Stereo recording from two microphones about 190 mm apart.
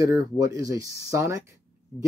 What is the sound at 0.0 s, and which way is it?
Speech, 15° right (ahead or behind).